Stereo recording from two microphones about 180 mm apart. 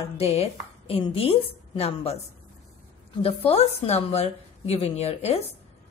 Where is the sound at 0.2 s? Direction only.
35° left (ahead or behind).